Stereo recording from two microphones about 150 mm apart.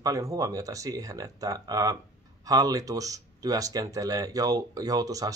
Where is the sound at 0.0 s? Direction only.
20° right (ahead or behind).